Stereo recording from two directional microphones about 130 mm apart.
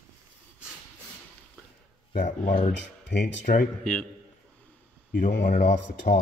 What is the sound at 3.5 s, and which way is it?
Speech, 90° left.